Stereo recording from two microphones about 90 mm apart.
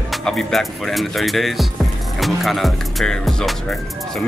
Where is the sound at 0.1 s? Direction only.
5° left (ahead or behind).